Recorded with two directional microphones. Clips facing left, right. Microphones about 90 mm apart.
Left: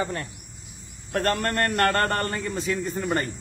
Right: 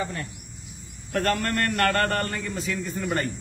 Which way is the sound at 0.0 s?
40° left (ahead or behind).